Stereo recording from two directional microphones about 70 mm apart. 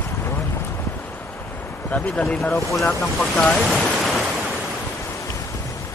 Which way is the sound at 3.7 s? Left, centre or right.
Centre.